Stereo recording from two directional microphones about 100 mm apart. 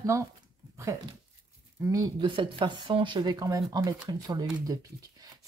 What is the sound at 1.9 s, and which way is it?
Speech, 50° right (ahead or behind).